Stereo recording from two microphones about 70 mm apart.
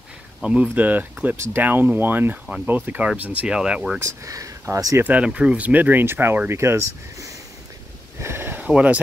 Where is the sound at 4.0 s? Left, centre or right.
Right.